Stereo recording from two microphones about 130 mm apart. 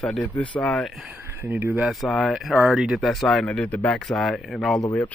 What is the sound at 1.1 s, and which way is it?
Speech, 15° right (ahead or behind).